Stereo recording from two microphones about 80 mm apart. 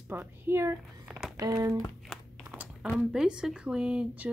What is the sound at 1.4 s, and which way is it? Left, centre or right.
Speech, right.